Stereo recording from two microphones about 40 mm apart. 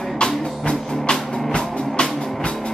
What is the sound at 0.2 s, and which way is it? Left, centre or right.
Music, left.